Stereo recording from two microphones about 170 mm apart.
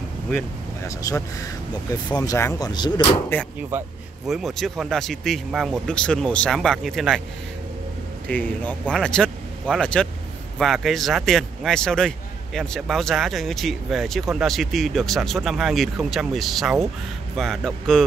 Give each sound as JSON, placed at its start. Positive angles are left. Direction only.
{"t": 0.8, "sound": "speech", "side_deg": 20}
{"t": 3.3, "sound": "speech", "side_deg": 10}
{"t": 4.3, "sound": "speech", "side_deg": 0}
{"t": 8.3, "sound": "speech", "side_deg": 10}